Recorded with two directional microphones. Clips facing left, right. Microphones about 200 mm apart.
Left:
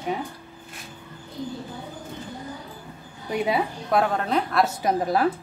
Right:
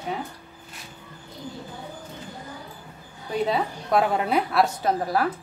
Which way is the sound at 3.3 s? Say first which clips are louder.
Even; 10° left (ahead or behind).